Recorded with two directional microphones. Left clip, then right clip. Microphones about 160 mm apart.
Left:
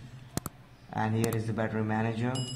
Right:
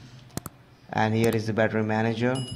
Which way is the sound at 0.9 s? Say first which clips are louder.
Right 7 dB; 45° right (ahead or behind).